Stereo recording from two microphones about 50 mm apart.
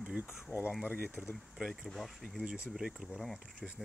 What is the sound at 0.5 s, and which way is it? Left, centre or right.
Speech, left.